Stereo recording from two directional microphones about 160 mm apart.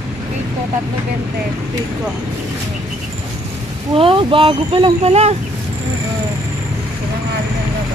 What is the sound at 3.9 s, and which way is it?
Speech, 35° right (ahead or behind).